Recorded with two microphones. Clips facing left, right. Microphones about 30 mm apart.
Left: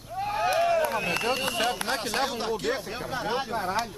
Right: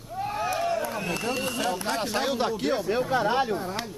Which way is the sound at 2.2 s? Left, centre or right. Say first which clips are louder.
Right 2 dB; centre.